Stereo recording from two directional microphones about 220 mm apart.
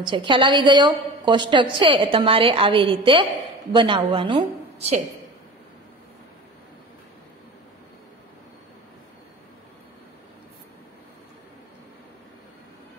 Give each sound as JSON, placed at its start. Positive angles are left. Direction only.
{"t": 0.0, "sound": "a woman's voice", "side_deg": -20}